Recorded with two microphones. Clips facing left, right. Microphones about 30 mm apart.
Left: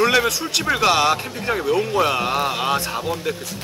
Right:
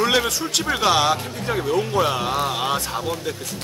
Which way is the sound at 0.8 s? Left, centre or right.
Left.